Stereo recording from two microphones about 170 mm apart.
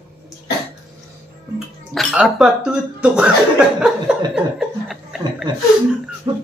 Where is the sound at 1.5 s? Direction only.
Centre (ahead or behind).